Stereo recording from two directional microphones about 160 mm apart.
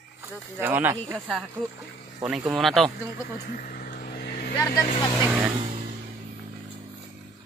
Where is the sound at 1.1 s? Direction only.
Centre (ahead or behind).